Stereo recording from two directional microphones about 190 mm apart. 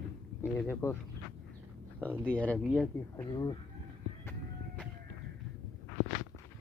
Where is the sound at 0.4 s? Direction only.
15° left (ahead or behind).